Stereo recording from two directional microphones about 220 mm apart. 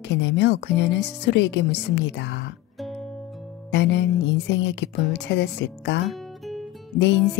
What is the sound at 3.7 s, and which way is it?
Speech, 55° left (ahead or behind).